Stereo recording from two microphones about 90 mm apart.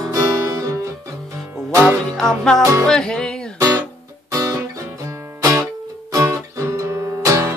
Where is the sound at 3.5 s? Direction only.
40° right (ahead or behind).